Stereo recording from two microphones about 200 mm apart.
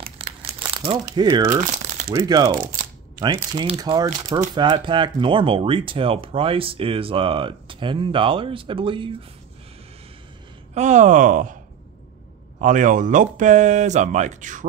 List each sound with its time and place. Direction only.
0.0 s crumpling: 30° right (ahead or behind)
1.6 s crumpling: 40° right (ahead or behind)
2.1 s speech: 20° right (ahead or behind)
3.6 s speech: 25° right (ahead or behind)
10.7 s speech: 35° right (ahead or behind)
12.5 s speech: 40° right (ahead or behind)